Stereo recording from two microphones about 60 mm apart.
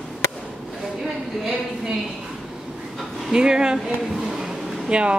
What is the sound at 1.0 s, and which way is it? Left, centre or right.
Speech, centre.